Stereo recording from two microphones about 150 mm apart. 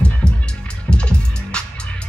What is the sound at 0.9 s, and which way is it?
Music, 5° left (ahead or behind).